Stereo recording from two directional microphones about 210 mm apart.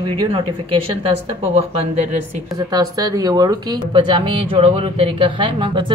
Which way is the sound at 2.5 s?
15° right (ahead or behind).